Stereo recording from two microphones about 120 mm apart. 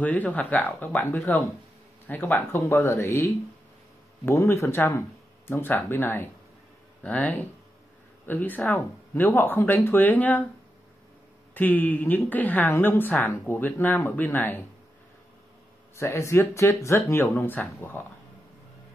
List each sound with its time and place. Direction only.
0.0 s speech: 10° left (ahead or behind)
11.5 s speech: 15° left (ahead or behind)
16.0 s speech: 25° left (ahead or behind)